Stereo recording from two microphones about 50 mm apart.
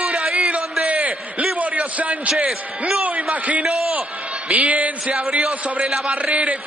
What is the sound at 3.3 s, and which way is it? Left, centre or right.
A man's voice, right.